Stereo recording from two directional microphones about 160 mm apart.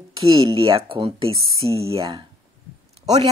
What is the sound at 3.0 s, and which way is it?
Speech, 40° right (ahead or behind).